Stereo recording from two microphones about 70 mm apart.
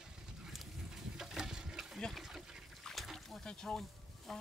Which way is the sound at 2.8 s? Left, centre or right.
Centre.